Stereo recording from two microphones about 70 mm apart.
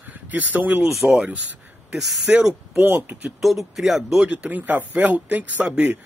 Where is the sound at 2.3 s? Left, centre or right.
Centre.